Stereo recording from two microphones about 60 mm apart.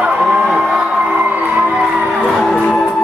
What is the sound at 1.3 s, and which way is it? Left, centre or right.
Music, right.